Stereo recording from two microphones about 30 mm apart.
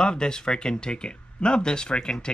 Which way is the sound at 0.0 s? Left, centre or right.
Left.